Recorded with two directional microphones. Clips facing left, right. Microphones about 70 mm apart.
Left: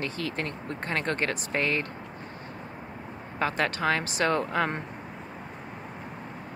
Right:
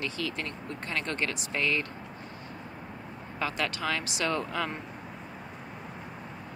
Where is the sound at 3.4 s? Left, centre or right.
Left.